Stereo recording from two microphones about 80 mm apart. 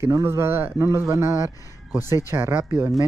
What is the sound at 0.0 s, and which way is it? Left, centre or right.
Speech, right.